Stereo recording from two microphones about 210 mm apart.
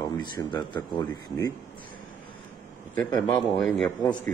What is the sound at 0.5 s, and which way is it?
Speech, 10° left (ahead or behind).